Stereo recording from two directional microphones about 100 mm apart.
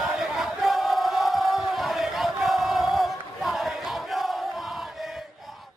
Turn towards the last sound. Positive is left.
turn(degrees=0)  # may be behind; listen again after turning